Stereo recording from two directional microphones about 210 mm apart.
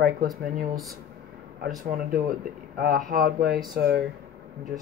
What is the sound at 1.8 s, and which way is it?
Speech, 40° right (ahead or behind).